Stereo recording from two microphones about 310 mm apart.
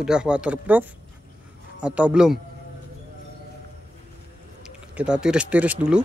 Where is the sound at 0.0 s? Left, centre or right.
Centre.